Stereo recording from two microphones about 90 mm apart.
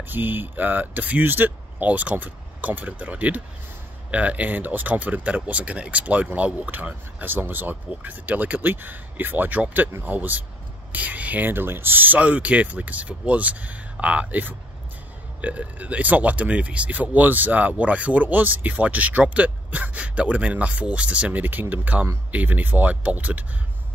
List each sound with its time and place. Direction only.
0.1 s speech: 20° right (ahead or behind)